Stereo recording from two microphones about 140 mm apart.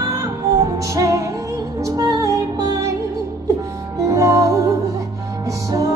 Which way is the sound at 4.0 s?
25° right (ahead or behind).